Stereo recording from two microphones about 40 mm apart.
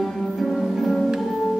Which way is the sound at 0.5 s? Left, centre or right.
Centre.